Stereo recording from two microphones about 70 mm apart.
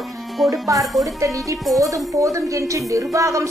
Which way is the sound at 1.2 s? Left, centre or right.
Right.